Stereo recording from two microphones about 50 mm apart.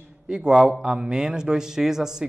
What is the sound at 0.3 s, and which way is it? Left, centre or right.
Speech, centre.